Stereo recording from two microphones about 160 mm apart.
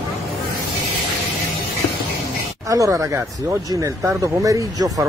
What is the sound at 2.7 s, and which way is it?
Speech, 20° right (ahead or behind).